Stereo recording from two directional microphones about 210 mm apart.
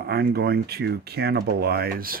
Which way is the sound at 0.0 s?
50° right (ahead or behind).